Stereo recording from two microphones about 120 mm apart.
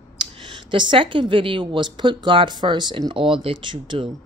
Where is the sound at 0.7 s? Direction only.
40° right (ahead or behind).